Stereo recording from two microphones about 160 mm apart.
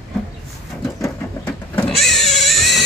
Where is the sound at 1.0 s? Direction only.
20° left (ahead or behind).